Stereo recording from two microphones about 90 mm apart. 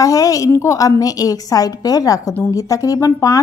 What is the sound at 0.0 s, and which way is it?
A woman's voice, 40° left (ahead or behind).